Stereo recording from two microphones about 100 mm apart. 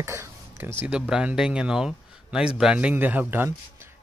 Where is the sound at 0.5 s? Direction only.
20° right (ahead or behind).